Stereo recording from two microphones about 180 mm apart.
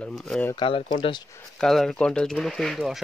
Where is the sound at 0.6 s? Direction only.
30° left (ahead or behind).